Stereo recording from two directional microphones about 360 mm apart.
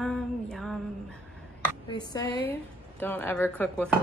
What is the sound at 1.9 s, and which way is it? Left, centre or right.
A woman's voice, centre.